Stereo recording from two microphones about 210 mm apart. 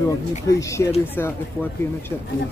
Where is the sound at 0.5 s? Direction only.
15° left (ahead or behind).